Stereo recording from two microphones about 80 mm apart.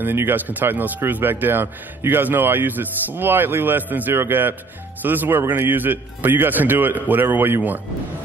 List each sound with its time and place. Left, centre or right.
0.0 s speech: right